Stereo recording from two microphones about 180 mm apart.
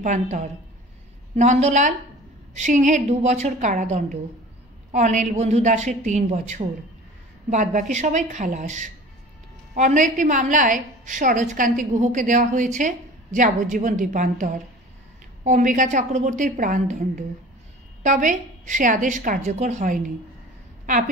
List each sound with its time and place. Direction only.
0.0 s a woman's voice: 40° right (ahead or behind)